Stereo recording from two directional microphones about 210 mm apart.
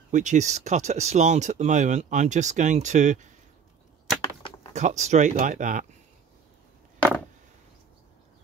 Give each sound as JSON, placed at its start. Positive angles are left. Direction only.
{"t": 0.1, "sound": "speech", "side_deg": -35}
{"t": 4.7, "sound": "speech", "side_deg": -35}